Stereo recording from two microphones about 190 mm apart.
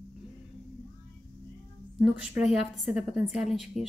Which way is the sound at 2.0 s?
5° right (ahead or behind).